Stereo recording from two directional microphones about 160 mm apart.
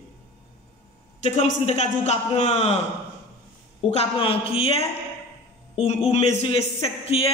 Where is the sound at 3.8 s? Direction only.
40° left (ahead or behind).